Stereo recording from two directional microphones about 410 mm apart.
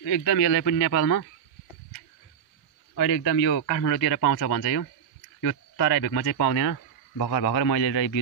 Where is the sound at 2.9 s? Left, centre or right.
Left.